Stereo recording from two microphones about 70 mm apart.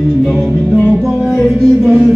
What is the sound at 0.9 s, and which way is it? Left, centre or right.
Music, centre.